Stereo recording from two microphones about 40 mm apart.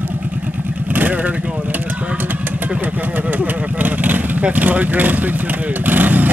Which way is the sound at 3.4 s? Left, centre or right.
Right.